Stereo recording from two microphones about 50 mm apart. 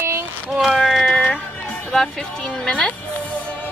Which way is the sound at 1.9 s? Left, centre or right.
Centre.